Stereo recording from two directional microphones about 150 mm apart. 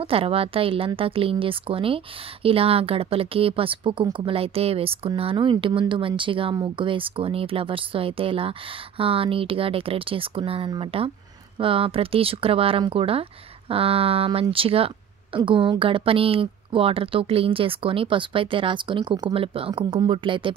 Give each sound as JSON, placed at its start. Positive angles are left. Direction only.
{"t": 0.0, "sound": "speech", "side_deg": -40}